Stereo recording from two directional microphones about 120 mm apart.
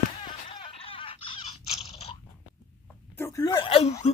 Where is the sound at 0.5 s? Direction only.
50° left (ahead or behind).